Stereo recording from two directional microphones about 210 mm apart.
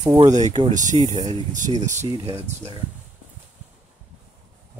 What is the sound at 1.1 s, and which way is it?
Speech, 20° right (ahead or behind).